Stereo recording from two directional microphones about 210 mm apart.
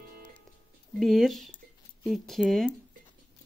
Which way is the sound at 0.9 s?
Centre (ahead or behind).